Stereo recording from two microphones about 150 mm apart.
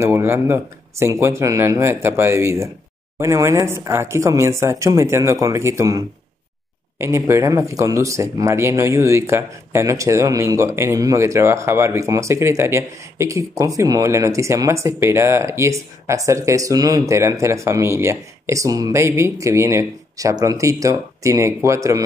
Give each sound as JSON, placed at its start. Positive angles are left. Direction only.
{"t": 0.0, "sound": "speech", "side_deg": -20}